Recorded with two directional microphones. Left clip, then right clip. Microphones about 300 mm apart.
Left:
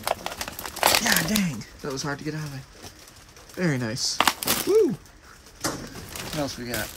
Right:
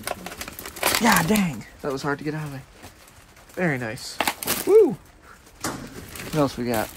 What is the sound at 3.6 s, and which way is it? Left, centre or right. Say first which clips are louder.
Speech: right 2 dB; centre.